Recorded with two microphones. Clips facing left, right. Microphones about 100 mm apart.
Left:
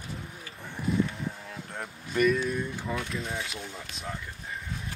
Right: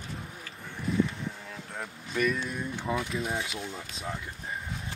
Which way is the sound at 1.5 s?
Centre (ahead or behind).